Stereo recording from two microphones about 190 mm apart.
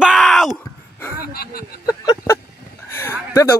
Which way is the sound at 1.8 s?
15° left (ahead or behind).